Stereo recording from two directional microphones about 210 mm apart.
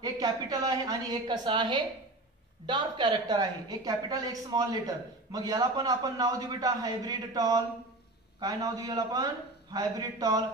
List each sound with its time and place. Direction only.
0.0 s a woman's voice: 15° right (ahead or behind)